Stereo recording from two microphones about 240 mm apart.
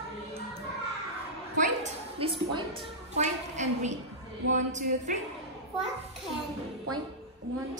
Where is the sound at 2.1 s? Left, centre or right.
Right.